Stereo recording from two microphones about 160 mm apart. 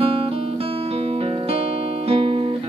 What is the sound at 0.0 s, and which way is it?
Music, 35° right (ahead or behind).